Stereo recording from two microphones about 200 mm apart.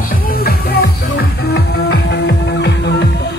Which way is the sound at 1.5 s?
55° left (ahead or behind).